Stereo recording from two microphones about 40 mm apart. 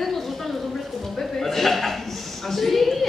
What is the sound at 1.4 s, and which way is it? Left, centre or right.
A man's voice, centre.